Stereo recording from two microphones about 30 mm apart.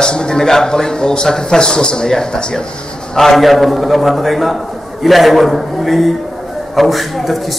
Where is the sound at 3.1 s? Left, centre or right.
Centre.